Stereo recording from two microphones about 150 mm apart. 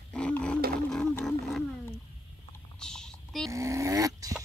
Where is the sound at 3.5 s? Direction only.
20° right (ahead or behind).